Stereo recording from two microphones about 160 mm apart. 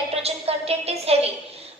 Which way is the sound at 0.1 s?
40° right (ahead or behind).